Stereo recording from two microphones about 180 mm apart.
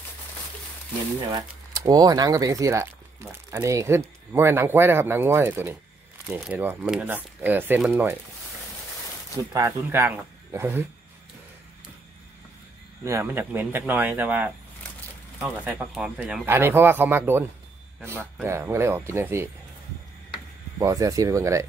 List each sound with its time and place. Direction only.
1.3 s speech: 20° right (ahead or behind)
9.5 s speech: 15° right (ahead or behind)
13.0 s speech: 15° right (ahead or behind)
20.8 s speech: 20° right (ahead or behind)